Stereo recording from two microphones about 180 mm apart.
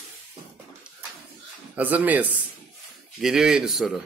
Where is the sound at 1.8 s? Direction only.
10° right (ahead or behind).